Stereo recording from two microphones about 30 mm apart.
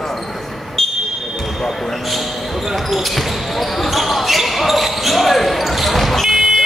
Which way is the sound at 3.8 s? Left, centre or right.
Centre.